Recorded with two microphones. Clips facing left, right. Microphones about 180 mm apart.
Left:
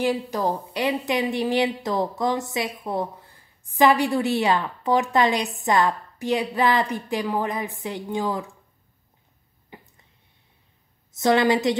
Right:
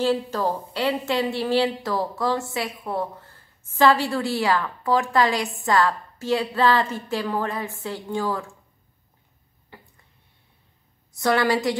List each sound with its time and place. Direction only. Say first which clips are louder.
0.0 s speech: right 1 dB; 15° left (ahead or behind)
9.7 s a sound: left 2 dB; 15° left (ahead or behind)
11.1 s a woman's voice: left 2 dB; 20° left (ahead or behind)